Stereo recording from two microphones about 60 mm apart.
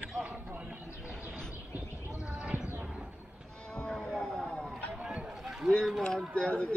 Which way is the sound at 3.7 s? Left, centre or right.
Centre.